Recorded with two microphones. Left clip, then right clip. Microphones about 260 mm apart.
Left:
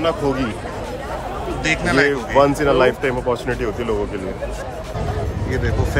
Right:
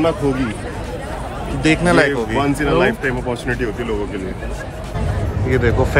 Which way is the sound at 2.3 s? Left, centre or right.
Left.